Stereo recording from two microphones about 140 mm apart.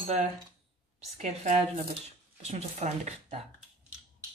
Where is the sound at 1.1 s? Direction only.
55° right (ahead or behind).